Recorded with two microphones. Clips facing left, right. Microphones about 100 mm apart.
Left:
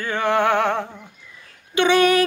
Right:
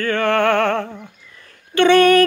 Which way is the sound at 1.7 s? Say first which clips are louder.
Right 4 dB; 15° left (ahead or behind).